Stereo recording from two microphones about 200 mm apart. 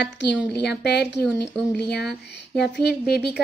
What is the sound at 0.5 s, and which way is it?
A woman's voice, 55° left (ahead or behind).